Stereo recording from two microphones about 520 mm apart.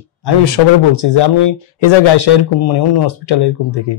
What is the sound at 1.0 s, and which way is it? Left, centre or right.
Speech, left.